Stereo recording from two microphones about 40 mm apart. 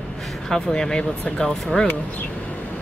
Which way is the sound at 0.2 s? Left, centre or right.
Centre.